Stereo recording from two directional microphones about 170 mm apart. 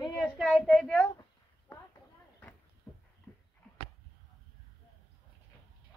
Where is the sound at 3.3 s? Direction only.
10° left (ahead or behind).